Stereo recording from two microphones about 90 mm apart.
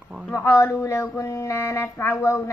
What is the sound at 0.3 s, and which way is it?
A woman's voice, 25° left (ahead or behind).